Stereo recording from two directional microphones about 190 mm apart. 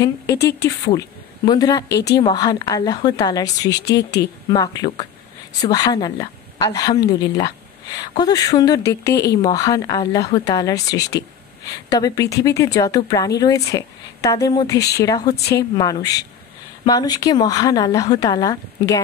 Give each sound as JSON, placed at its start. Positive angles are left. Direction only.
{"t": 0.0, "sound": "a woman's voice", "side_deg": 15}
{"t": 1.9, "sound": "speech", "side_deg": 60}
{"t": 2.1, "sound": "a woman's voice", "side_deg": 20}
{"t": 9.1, "sound": "speech", "side_deg": 60}
{"t": 9.4, "sound": "a woman's voice", "side_deg": 20}